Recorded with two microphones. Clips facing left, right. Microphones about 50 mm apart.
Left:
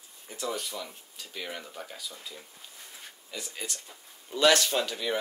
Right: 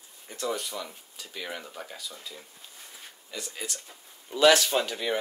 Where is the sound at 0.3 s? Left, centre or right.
Centre.